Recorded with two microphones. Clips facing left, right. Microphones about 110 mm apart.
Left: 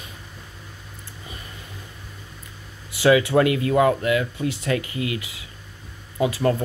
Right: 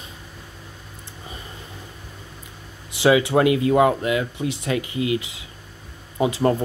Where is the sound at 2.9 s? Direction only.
20° right (ahead or behind).